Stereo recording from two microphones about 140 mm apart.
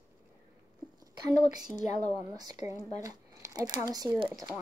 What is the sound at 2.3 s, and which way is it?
Speech, 25° right (ahead or behind).